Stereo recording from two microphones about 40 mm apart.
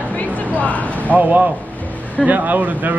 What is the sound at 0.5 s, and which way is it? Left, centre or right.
Speech, left.